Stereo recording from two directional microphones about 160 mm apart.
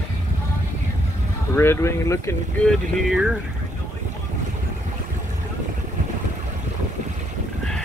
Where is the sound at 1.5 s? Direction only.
15° left (ahead or behind).